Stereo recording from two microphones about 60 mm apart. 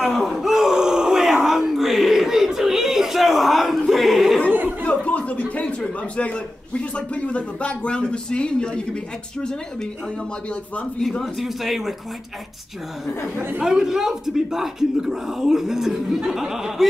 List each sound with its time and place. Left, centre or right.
0.0 s groan: centre
4.5 s chatter: right
4.8 s a man's voice: left
11.0 s speech: centre
13.6 s speech: centre